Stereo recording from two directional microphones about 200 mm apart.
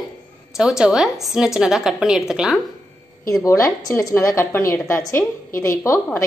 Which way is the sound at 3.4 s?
15° left (ahead or behind).